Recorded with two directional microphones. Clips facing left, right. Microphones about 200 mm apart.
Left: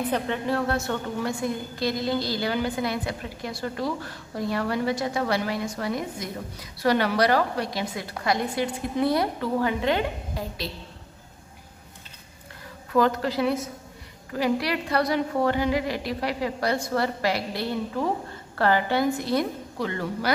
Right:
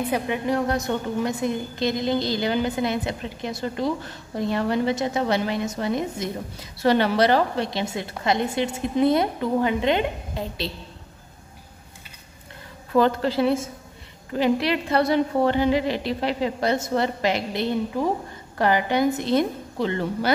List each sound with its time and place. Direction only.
0.0 s a woman's voice: 10° right (ahead or behind)
12.9 s a woman's voice: 30° right (ahead or behind)